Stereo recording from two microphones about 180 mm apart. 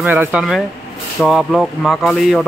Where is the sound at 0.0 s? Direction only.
10° right (ahead or behind).